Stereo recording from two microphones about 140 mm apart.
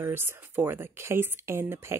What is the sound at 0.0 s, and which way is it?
Speech, 15° right (ahead or behind).